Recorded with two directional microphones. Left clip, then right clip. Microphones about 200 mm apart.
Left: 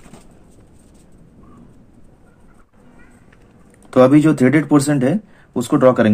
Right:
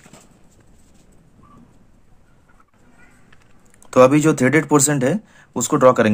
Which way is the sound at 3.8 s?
25° right (ahead or behind).